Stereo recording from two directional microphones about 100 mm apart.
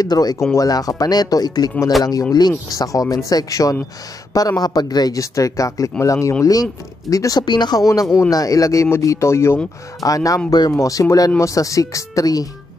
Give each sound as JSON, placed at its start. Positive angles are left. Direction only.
{"t": 0.0, "sound": "speech", "side_deg": 40}
{"t": 0.4, "sound": "speech", "side_deg": 30}
{"t": 7.9, "sound": "speech", "side_deg": 30}